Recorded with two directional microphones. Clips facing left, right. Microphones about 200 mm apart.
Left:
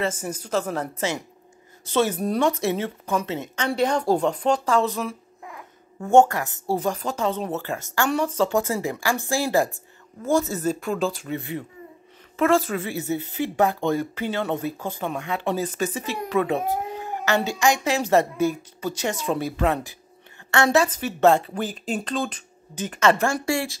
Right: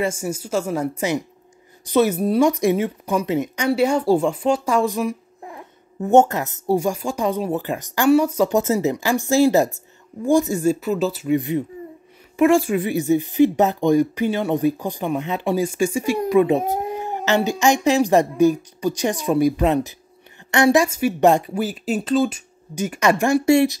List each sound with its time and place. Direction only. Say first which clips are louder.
0.0 s a woman's voice: right 4 dB; 10° right (ahead or behind)
11.3 s a woman's voice: right 9 dB; 15° right (ahead or behind)